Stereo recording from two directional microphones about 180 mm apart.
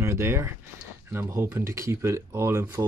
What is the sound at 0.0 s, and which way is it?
Speech, 15° right (ahead or behind).